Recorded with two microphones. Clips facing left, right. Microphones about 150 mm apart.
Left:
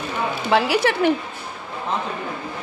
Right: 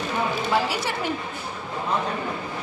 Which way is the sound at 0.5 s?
70° left (ahead or behind).